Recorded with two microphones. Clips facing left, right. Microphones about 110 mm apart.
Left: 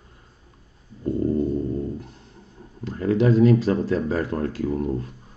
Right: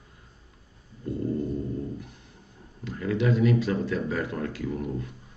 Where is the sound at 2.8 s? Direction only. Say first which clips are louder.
Left 6 dB; 35° left (ahead or behind).